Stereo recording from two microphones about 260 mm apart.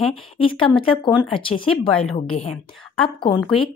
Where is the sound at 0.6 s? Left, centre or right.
Centre.